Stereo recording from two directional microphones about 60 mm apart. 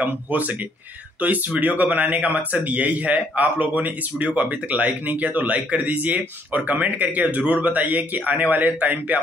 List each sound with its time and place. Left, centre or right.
0.0 s speech: right